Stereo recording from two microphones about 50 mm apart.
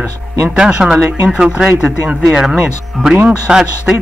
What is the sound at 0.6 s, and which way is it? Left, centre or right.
A man's voice, centre.